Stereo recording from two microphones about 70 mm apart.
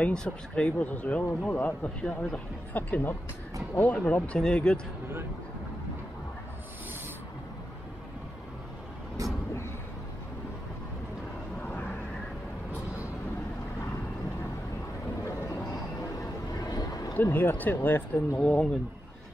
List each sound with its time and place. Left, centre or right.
0.0 s speech: centre
9.2 s vehicle: right
15.2 s vehicle: left
17.1 s speech: left
18.4 s speech: centre